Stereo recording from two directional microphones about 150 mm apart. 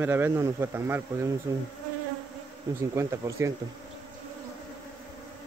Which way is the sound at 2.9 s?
20° right (ahead or behind).